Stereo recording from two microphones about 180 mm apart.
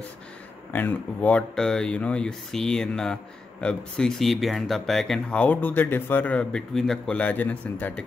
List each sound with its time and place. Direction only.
0.7 s speech: 10° left (ahead or behind)